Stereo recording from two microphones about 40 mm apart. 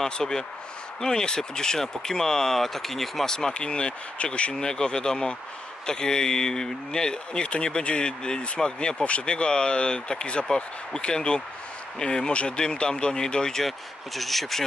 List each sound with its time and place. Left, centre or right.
0.0 s speech: centre
3.3 s speech: left
4.6 s speech: centre